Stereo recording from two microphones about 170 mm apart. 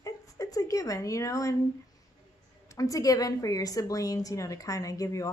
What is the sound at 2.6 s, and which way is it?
A woman's voice, 20° left (ahead or behind).